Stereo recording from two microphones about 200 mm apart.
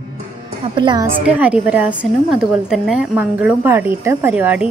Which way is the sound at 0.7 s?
25° right (ahead or behind).